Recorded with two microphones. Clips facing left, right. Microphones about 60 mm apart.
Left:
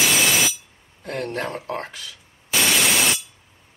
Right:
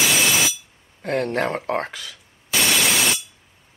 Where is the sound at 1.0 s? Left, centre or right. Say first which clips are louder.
Right 5 dB; right.